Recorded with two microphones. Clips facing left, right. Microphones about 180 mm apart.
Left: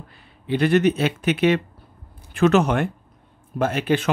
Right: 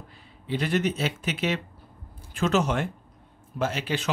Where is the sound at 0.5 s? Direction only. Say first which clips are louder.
Left 8 dB; 60° left (ahead or behind).